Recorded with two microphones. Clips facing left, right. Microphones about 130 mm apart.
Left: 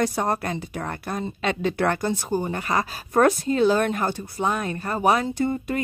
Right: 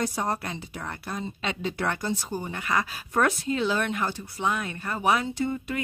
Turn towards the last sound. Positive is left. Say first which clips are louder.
# left 4 dB
turn(degrees=45)  # may be behind; listen again after turning